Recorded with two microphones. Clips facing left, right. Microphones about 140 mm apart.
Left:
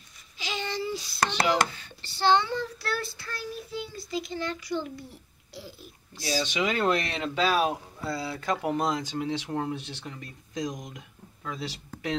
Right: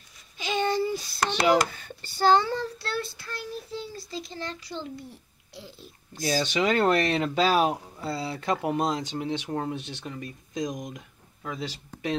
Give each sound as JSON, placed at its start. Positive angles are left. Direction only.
{"t": 0.4, "sound": "hands", "side_deg": -50}
{"t": 3.7, "sound": "a child's voice", "side_deg": -35}
{"t": 6.1, "sound": "speech", "side_deg": -50}
{"t": 6.8, "sound": "a child's voice", "side_deg": -40}